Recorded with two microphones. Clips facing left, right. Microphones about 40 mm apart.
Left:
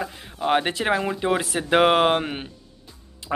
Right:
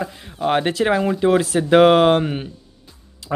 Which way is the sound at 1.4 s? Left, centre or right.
Left.